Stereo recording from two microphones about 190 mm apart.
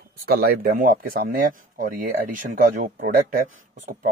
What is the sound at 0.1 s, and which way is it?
Speech, 55° right (ahead or behind).